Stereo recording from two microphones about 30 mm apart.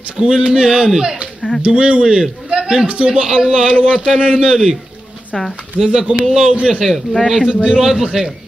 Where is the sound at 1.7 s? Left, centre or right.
Right.